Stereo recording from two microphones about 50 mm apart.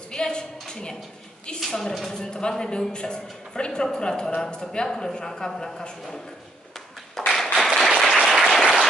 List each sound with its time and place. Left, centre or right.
0.1 s a sound: centre
1.6 s a woman's voice: centre
7.2 s tap: centre
7.5 s applause: centre